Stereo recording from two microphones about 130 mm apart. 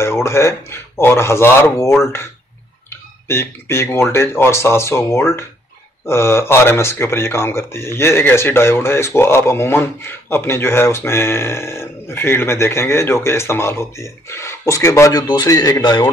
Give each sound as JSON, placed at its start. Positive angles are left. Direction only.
{"t": 0.0, "sound": "speech", "side_deg": 20}